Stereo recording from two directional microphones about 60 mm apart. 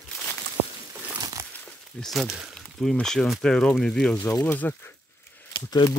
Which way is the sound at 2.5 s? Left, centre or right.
Centre.